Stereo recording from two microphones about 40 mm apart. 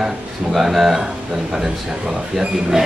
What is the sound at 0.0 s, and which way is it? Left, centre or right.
Speech, centre.